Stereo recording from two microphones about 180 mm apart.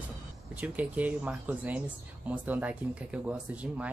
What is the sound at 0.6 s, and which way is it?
Speech, 10° right (ahead or behind).